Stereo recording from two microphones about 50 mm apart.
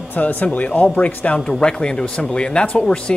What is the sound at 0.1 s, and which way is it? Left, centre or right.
Speech, left.